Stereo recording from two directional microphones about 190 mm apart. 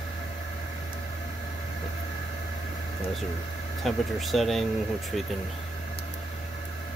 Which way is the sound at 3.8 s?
Centre (ahead or behind).